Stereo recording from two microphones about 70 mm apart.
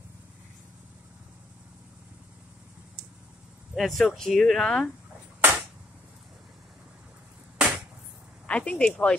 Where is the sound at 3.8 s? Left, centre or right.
Centre.